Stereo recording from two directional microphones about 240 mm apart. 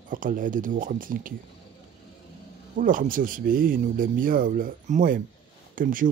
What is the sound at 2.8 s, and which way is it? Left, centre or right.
Speech, right.